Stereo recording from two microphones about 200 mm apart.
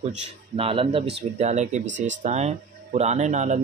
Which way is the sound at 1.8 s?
65° right (ahead or behind).